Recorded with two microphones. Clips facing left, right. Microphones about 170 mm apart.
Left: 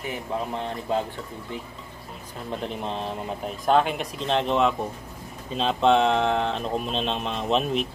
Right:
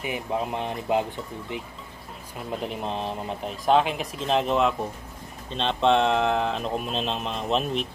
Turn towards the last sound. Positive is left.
turn(degrees=0)  # may be behind; listen again after turning